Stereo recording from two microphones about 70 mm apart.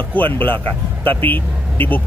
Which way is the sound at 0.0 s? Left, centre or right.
Left.